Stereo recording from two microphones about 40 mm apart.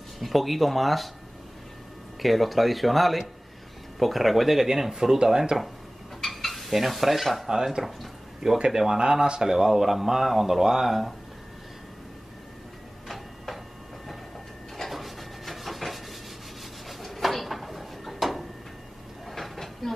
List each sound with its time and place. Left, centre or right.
0.2 s speech: centre
2.2 s speech: centre
6.2 s dishes: centre
7.5 s speech: centre
14.8 s a sound: centre
19.2 s train: centre